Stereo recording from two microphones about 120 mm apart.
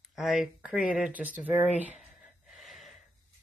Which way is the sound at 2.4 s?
Centre (ahead or behind).